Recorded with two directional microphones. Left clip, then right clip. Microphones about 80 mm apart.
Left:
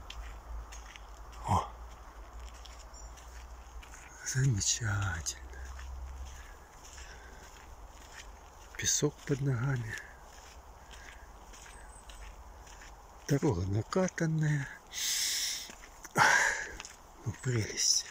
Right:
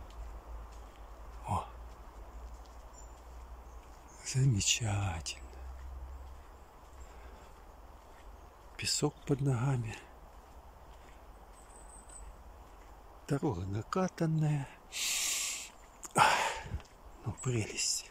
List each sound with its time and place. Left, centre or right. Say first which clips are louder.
1.4 s a sound: left 5 dB; centre
4.3 s speech: right 1 dB; right
8.7 s speech: left 2 dB; centre
9.2 s speech: right 1 dB; right
13.3 s speech: left 4 dB; centre
14.1 s speech: left 1 dB; centre
14.9 s snort: left 1 dB; right
16.3 s a sound: left 4 dB; right
17.4 s speech: left 2 dB; centre